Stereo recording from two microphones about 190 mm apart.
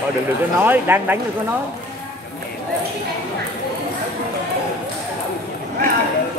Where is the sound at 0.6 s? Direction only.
10° right (ahead or behind).